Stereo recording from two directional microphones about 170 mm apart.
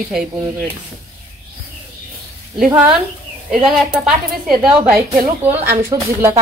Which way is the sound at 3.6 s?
5° right (ahead or behind).